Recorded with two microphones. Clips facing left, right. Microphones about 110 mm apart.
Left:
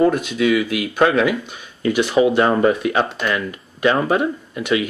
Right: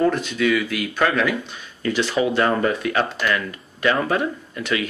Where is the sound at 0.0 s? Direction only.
10° left (ahead or behind).